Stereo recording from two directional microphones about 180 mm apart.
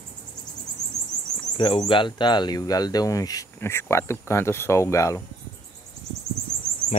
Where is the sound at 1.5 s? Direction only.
25° left (ahead or behind).